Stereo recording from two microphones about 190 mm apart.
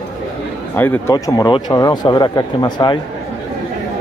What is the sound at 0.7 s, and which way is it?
Speech, 10° left (ahead or behind).